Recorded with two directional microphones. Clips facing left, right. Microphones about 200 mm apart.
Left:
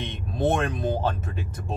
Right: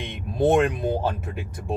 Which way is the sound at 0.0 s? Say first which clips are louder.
Right 3 dB; 15° right (ahead or behind).